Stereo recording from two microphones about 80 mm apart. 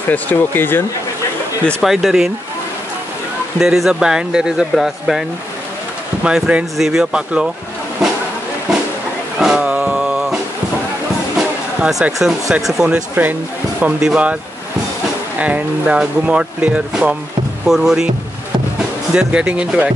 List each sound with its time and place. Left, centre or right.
0.1 s speech: left
1.8 s speech: centre
3.5 s speech: centre
6.2 s speech: centre
9.4 s a sound: centre
11.3 s speech: centre
13.1 s speech: right
15.3 s speech: centre
19.1 s speech: centre